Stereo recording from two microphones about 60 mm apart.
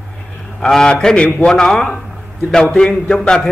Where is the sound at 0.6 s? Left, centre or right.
Centre.